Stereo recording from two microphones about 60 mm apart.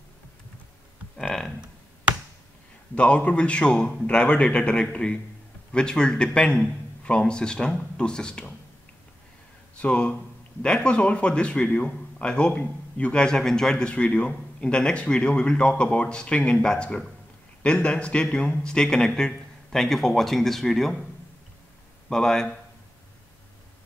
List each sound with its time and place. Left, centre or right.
2.9 s a man's voice: left
9.8 s a man's voice: left
22.1 s a man's voice: centre